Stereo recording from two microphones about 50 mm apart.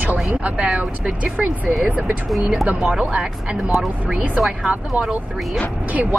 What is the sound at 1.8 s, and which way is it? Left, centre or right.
Speech, right.